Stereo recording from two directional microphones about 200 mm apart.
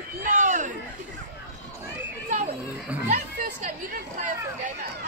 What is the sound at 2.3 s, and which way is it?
Children playing, 35° right (ahead or behind).